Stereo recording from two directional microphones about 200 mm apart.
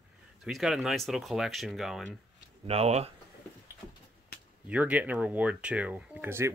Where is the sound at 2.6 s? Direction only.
30° right (ahead or behind).